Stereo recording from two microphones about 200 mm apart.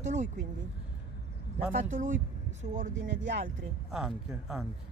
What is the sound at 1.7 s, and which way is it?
Speech, 40° right (ahead or behind).